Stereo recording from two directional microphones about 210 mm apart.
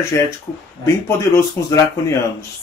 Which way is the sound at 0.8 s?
15° left (ahead or behind).